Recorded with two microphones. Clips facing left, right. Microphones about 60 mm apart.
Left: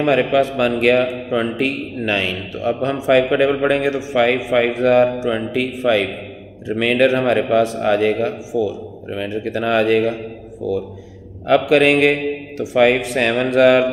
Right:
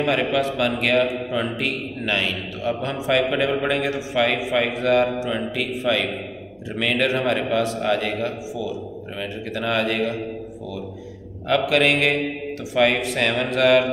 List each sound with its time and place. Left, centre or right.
0.0 s a man's voice: left
11.4 s a man's voice: left